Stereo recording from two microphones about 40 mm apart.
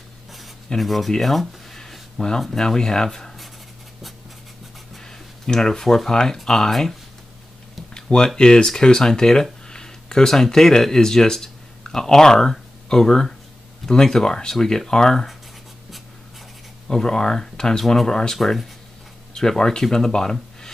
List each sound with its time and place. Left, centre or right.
0.7 s speech: centre
2.1 s speech: centre
4.9 s a sound: centre
6.4 s speech: centre
6.7 s speech: centre
7.9 s a sound: centre
8.4 s speech: left
16.8 s speech: centre
18.4 s speech: centre
19.3 s speech: centre